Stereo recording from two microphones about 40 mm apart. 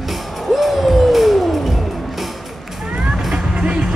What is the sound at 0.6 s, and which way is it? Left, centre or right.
Music, centre.